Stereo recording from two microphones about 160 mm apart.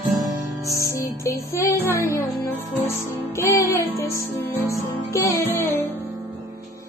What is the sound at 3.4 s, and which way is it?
Music, 15° left (ahead or behind).